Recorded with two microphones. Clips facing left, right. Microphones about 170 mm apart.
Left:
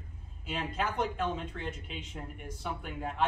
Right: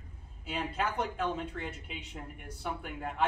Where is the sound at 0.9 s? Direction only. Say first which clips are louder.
Left 1 dB; 5° right (ahead or behind).